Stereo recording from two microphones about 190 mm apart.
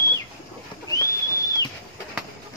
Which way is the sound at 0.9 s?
15° left (ahead or behind).